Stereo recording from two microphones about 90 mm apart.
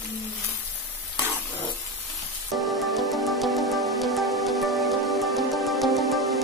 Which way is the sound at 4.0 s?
Centre (ahead or behind).